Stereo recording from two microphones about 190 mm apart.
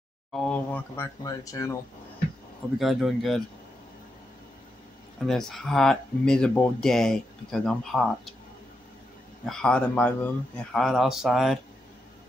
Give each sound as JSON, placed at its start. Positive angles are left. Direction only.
{"t": 0.3, "sound": "speech", "side_deg": 5}
{"t": 2.8, "sound": "speech", "side_deg": 0}
{"t": 5.2, "sound": "speech", "side_deg": 0}
{"t": 9.5, "sound": "speech", "side_deg": 5}